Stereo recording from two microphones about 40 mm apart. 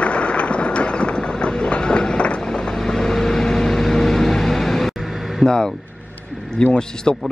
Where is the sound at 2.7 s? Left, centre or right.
Centre.